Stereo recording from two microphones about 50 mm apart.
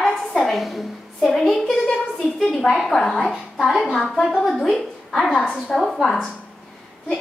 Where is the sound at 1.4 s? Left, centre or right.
Centre.